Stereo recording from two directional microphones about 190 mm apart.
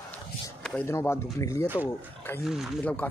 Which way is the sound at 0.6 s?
10° left (ahead or behind).